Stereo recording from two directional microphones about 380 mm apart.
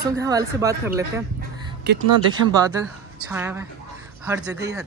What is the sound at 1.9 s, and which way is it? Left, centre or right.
Speech, right.